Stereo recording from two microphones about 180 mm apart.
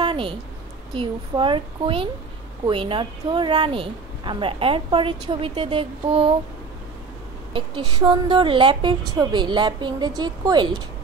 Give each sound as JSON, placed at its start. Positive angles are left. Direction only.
{"t": 0.0, "sound": "a sound", "side_deg": -30}
{"t": 0.9, "sound": "speech", "side_deg": -25}
{"t": 7.5, "sound": "speech", "side_deg": -30}